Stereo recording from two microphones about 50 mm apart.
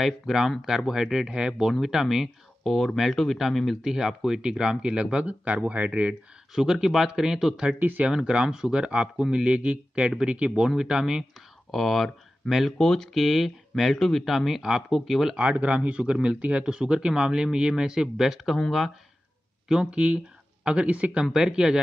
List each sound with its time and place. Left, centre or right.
0.0 s a man's voice: centre
2.6 s a man's voice: centre; by 6.1 s right
6.5 s a man's voice: centre
11.7 s speech: centre
12.7 s speech: centre
13.1 s speech: centre
13.9 s speech: centre
14.2 s speech: centre
15.3 s a man's voice: right; by 18.6 s centre
19.7 s speech: centre
21.3 s a man's voice: centre